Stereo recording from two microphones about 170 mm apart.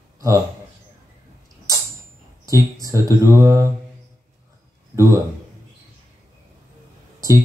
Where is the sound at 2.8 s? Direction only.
20° right (ahead or behind).